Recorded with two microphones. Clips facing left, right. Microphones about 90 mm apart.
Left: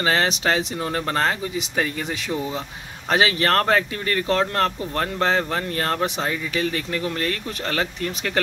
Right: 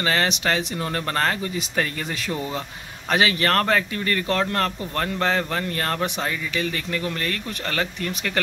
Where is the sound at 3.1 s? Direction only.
30° left (ahead or behind).